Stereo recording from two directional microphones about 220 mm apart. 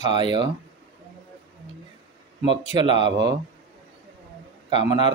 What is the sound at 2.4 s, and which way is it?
Speech, 20° right (ahead or behind).